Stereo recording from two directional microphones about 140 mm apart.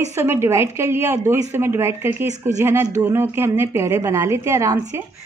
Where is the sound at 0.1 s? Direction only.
20° right (ahead or behind).